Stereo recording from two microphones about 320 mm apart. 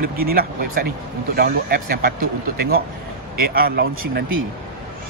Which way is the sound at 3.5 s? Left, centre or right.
Right.